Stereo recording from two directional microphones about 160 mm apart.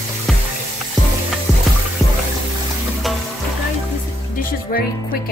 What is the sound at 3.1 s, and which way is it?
Music, centre (ahead or behind).